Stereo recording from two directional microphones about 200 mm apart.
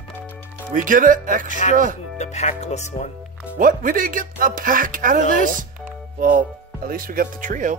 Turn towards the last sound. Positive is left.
turn(degrees=-40)  # may be behind; listen again after turning